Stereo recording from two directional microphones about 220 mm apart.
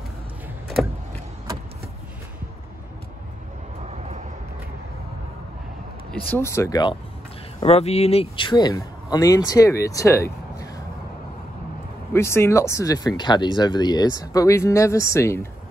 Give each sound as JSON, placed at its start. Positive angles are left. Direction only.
{"t": 3.8, "sound": "vehicle", "side_deg": -30}
{"t": 6.3, "sound": "speech", "side_deg": 10}
{"t": 7.6, "sound": "speech", "side_deg": 30}
{"t": 12.1, "sound": "speech", "side_deg": 10}